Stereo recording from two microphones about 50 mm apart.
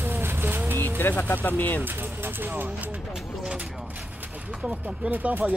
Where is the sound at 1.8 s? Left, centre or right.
Right.